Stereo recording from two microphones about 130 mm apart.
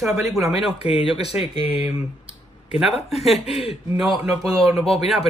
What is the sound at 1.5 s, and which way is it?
Speech, 45° left (ahead or behind).